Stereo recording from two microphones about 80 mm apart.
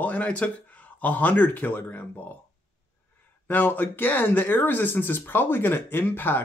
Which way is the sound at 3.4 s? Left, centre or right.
Left.